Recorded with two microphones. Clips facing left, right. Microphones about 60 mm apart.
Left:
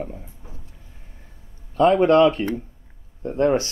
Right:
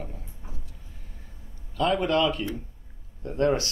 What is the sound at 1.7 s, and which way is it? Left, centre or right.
A man's voice, left.